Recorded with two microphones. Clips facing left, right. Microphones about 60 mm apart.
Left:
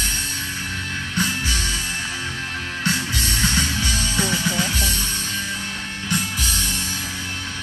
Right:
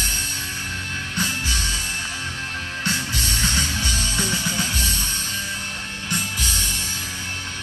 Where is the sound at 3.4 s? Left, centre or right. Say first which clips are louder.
Left 3 dB; centre.